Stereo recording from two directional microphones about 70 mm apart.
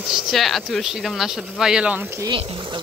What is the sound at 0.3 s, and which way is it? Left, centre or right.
Speech, centre.